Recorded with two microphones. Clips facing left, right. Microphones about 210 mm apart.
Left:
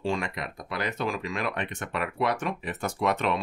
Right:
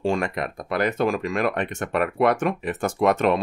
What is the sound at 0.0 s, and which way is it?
Speech, 50° right (ahead or behind).